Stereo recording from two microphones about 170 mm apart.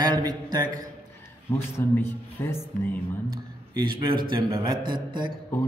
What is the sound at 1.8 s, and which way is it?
Speech, 10° left (ahead or behind).